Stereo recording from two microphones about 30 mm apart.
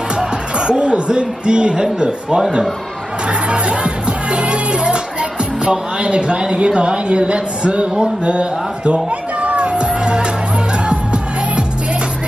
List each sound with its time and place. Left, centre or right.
0.6 s a man's voice: right
3.3 s music: right
5.7 s a man's voice: right
10.9 s music: right